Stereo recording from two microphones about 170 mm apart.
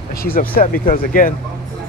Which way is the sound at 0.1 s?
60° left (ahead or behind).